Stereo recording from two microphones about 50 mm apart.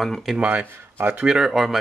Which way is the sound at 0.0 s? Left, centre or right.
Centre.